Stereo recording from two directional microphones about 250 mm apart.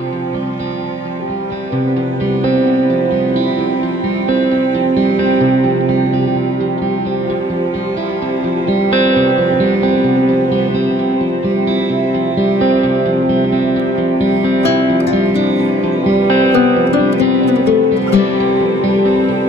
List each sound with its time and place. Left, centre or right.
17.5 s music: left